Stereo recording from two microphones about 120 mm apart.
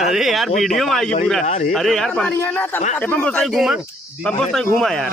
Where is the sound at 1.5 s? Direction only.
80° left.